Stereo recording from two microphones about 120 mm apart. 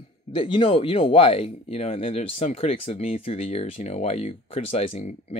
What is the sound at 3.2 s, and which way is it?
Speech, 60° left (ahead or behind).